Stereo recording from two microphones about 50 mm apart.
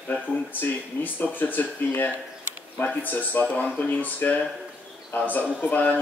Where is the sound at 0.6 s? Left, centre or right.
Left.